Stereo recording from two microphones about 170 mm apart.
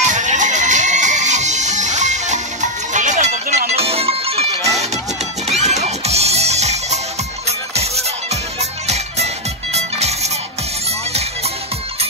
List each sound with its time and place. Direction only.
0.0 s music: 45° right (ahead or behind)